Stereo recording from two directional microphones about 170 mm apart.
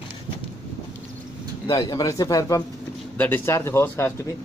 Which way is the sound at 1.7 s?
20° left (ahead or behind).